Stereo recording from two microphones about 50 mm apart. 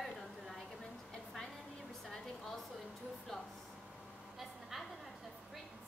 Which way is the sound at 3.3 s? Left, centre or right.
Centre.